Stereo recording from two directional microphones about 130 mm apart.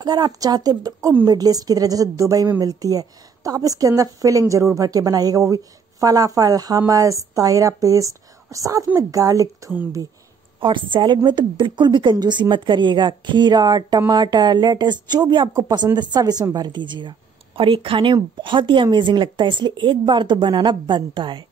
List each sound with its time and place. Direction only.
0.0 s a woman's voice: 30° right (ahead or behind)
10.6 s a woman's voice: 40° right (ahead or behind)